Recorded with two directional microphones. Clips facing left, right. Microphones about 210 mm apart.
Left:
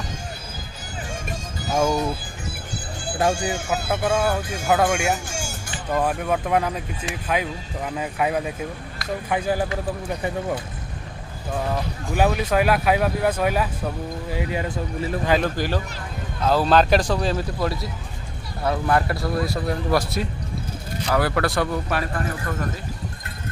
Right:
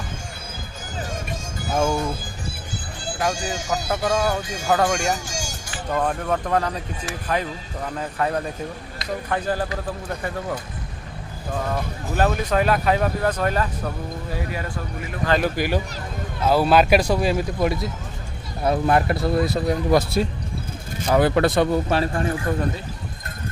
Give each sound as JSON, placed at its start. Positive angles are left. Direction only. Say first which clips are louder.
{"t": 1.7, "sound": "speech", "louder": "left 1 dB", "side_deg": 0}
{"t": 3.3, "sound": "speech", "louder": "left 2 dB", "side_deg": 60}
{"t": 3.9, "sound": "speech", "louder": "even", "side_deg": 5}
{"t": 4.4, "sound": "speech", "louder": "left 1 dB", "side_deg": 60}
{"t": 4.6, "sound": "speech", "louder": "left 1 dB", "side_deg": 5}
{"t": 5.1, "sound": "music", "louder": "left 1 dB", "side_deg": 60}
{"t": 5.9, "sound": "speech", "louder": "left 1 dB", "side_deg": 5}
{"t": 12.1, "sound": "speech", "louder": "left 1 dB", "side_deg": 10}
{"t": 14.3, "sound": "speech", "louder": "left 4 dB", "side_deg": 20}
{"t": 15.4, "sound": "a man's voice", "louder": "right 2 dB", "side_deg": -10}